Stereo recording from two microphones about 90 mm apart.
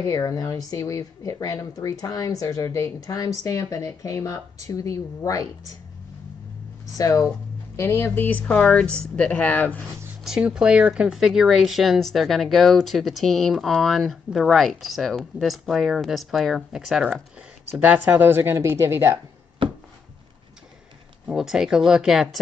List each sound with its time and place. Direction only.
0.0 s speech: 40° left (ahead or behind)
7.0 s speech: 40° left (ahead or behind)
7.7 s speech: 30° left (ahead or behind)
10.2 s speech: 5° right (ahead or behind)
17.6 s a woman's voice: 20° right (ahead or behind)
19.6 s a sound: 65° right (ahead or behind)
21.3 s speech: 5° right (ahead or behind)